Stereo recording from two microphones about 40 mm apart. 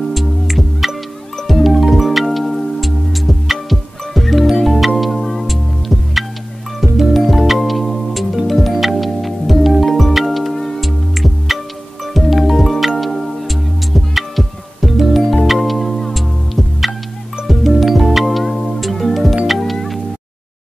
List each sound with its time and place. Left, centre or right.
0.1 s music: centre